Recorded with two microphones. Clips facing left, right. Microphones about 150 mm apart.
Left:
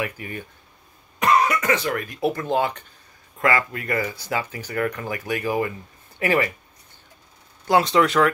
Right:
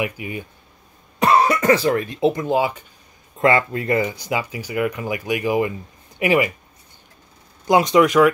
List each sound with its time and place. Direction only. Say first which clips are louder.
0.0 s speech: right 4 dB; 10° right (ahead or behind)
1.2 s speech: right 4 dB; 35° right (ahead or behind); by 2.8 s 10° right (ahead or behind)
3.3 s speech: right 5 dB; 25° right (ahead or behind)
7.6 s speech: right 3 dB; 15° right (ahead or behind)